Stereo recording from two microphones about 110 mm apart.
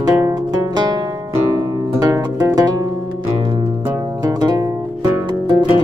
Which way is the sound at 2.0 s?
30° right (ahead or behind).